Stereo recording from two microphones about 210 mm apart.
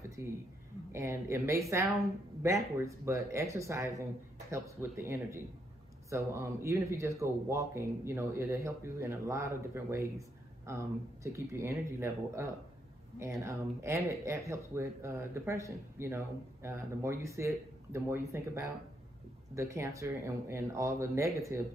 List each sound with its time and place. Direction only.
0.2 s speech: 10° right (ahead or behind)